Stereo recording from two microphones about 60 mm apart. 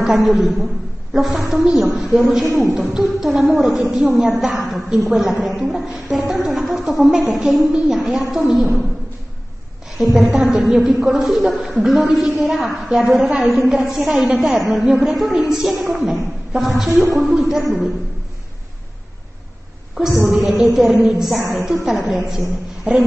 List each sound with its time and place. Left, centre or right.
0.0 s a man's voice: centre
10.1 s a woman's voice: centre
20.2 s a woman's voice: centre